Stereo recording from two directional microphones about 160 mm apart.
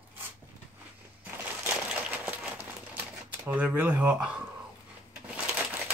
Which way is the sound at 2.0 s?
10° right (ahead or behind).